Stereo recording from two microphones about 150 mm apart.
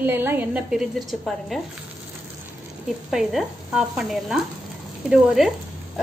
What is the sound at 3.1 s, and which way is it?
A woman's voice, 5° right (ahead or behind).